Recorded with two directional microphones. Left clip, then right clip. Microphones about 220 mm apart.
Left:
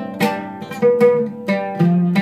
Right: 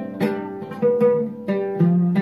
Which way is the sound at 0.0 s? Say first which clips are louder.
Left 4 dB; 30° left (ahead or behind).